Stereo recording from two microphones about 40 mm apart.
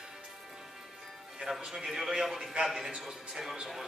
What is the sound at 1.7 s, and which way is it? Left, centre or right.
A man's voice, centre.